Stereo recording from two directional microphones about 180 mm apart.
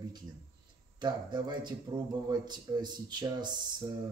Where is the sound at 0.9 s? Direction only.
25° right (ahead or behind).